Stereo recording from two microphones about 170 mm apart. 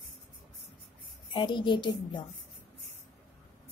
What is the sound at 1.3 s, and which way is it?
Speech, 30° left (ahead or behind).